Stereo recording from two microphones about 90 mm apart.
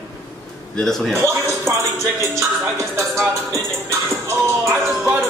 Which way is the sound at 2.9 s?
30° right (ahead or behind).